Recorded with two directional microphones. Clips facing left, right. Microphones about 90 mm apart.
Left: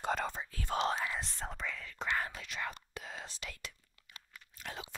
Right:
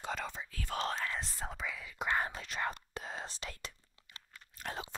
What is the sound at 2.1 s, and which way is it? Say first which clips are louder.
Speech: right 2 dB; 25° right (ahead or behind).